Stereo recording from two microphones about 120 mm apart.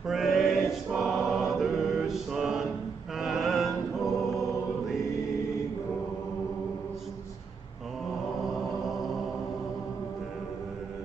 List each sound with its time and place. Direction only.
0.0 s choir: centre (ahead or behind)
3.2 s chant: centre (ahead or behind)